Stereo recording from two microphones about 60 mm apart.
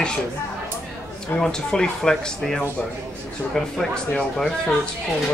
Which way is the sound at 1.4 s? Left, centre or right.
Centre.